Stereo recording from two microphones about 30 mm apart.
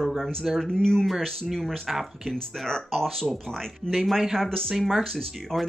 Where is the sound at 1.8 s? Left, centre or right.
Centre.